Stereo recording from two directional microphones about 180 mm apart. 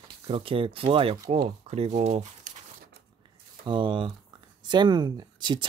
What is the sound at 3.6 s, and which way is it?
Speech, 25° right (ahead or behind).